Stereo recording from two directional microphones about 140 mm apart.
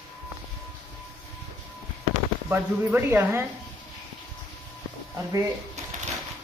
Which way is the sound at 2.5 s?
15° right (ahead or behind).